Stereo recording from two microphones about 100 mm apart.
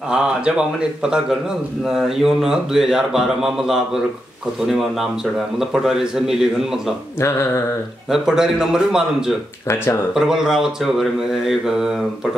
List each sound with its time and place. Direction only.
0.1 s a man's voice: 10° right (ahead or behind)
7.2 s a sound: 25° left (ahead or behind)
8.1 s a man's voice: 5° right (ahead or behind)